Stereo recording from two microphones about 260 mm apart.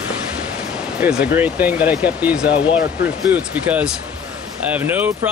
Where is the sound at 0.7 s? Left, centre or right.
Centre.